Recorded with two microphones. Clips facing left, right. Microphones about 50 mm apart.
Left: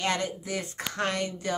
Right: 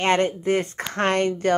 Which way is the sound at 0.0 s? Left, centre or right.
Right.